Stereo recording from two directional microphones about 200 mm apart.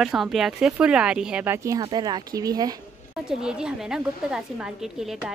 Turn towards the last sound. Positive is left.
turn(degrees=-5)  # may be behind; listen again after turning